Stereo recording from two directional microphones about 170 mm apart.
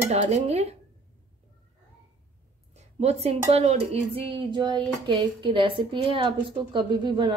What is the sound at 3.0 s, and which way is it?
Speech, 40° right (ahead or behind).